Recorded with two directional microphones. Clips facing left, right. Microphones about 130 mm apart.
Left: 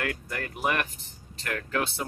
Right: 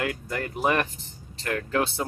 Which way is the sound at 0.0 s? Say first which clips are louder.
Right 3 dB; 25° right (ahead or behind).